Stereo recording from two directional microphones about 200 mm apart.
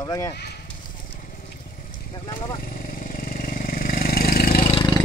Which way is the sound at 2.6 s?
45° left (ahead or behind).